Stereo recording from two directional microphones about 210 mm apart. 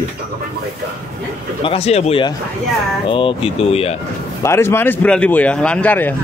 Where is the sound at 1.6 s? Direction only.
30° left (ahead or behind).